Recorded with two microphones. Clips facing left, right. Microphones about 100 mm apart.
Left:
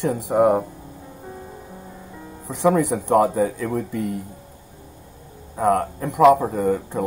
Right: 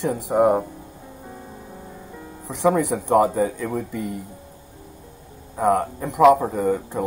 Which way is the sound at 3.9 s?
55° left (ahead or behind).